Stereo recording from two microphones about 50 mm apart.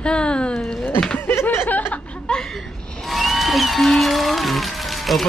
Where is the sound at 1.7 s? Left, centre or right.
Left.